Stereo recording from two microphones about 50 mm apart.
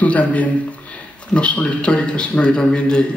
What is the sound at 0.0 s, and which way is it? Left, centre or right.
A man's voice, left.